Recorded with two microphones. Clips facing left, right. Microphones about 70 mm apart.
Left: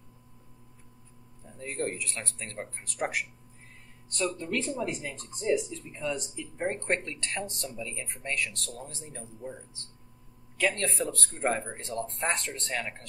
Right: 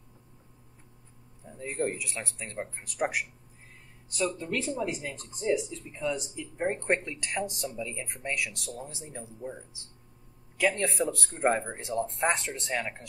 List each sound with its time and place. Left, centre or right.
1.8 s speech: centre
4.4 s speech: centre